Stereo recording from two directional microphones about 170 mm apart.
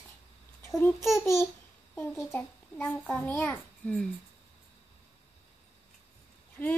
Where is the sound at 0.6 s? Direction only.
15° left (ahead or behind).